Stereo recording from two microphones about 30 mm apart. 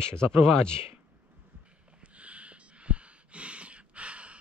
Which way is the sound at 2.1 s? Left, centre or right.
Right.